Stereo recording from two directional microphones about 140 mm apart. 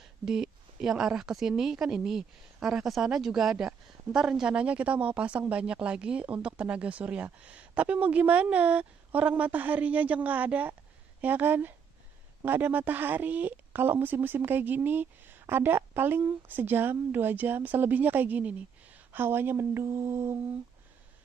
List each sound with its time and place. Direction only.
0.2 s a woman's voice: 5° right (ahead or behind)